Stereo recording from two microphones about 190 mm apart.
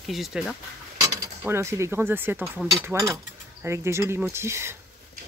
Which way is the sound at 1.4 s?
15° right (ahead or behind).